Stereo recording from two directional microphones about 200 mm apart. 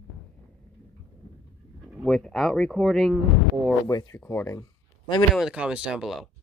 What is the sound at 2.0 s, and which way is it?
Speech, centre (ahead or behind).